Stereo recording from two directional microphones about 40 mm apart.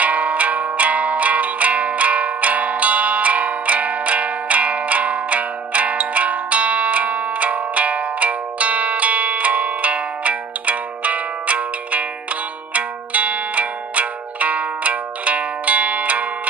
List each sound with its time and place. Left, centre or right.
0.0 s music: right